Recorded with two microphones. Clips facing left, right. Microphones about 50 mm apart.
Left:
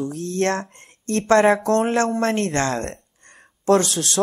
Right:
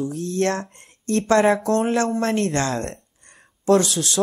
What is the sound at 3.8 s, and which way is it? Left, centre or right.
Speech, left.